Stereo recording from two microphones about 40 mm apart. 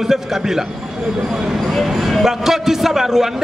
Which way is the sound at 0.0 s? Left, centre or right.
Centre.